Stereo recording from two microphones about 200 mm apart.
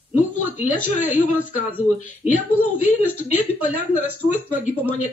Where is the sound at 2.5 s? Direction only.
90° left.